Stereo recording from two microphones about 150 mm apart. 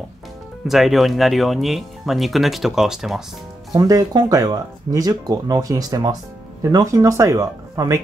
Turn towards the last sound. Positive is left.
turn(degrees=-20)  # may be behind; listen again after turning